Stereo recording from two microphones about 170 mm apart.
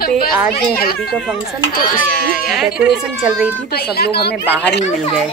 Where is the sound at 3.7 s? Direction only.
70° left (ahead or behind).